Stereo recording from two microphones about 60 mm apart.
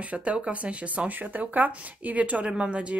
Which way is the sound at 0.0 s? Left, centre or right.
Right.